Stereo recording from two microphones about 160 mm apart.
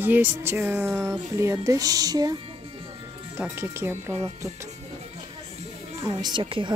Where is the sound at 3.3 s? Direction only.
15° right (ahead or behind).